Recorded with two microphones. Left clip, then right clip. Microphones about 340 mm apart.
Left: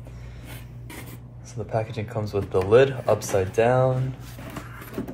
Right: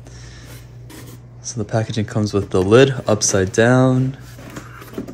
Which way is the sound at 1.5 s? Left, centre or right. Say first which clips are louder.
Right 5 dB; right.